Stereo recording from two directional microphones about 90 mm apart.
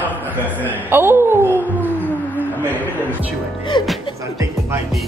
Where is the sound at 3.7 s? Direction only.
55° left (ahead or behind).